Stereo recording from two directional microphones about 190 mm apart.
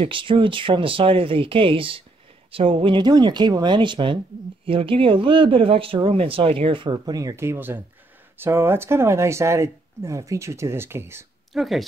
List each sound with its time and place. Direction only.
0.0 s speech: 25° right (ahead or behind)
11.5 s speech: centre (ahead or behind)